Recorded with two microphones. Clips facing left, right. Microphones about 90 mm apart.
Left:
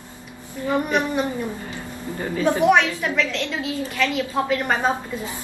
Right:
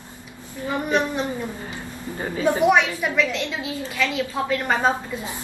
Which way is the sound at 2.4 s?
10° right (ahead or behind).